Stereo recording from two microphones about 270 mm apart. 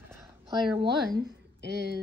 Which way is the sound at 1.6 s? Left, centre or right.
Right.